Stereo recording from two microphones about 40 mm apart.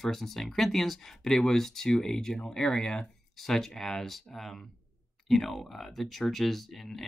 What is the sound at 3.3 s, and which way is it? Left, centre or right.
Speech, centre.